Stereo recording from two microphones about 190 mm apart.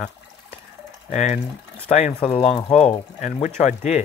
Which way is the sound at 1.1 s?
40° left (ahead or behind).